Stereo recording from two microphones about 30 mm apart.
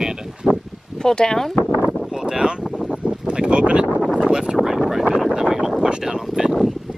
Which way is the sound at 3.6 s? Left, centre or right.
Right.